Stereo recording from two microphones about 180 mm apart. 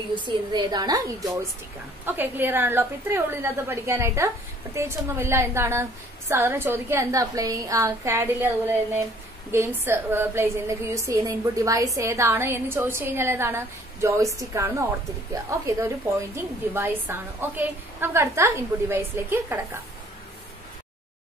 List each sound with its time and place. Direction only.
0.2 s a woman's voice: 25° right (ahead or behind)
2.0 s a woman's voice: 10° right (ahead or behind)